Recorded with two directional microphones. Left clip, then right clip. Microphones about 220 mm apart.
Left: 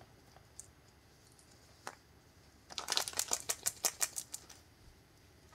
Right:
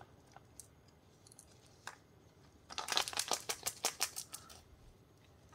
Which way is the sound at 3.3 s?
15° left (ahead or behind).